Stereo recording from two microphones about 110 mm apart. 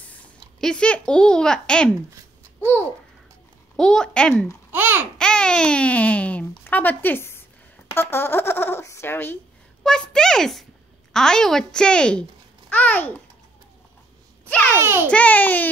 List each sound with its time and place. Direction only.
0.0 s a child's voice: 10° left (ahead or behind)
3.7 s a child's voice: 5° left (ahead or behind)
4.7 s speech: 20° right (ahead or behind)
5.1 s speech: 5° left (ahead or behind)
9.8 s a child's voice: 5° left (ahead or behind)
14.5 s speech: 15° left (ahead or behind)
14.8 s a child's voice: 20° right (ahead or behind)
15.0 s speech: 15° left (ahead or behind)